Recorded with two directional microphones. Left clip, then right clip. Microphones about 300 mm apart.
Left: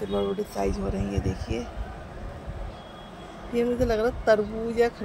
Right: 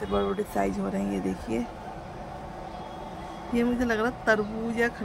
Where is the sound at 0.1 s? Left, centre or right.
Centre.